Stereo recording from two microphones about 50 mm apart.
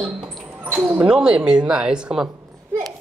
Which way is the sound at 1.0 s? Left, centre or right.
Centre.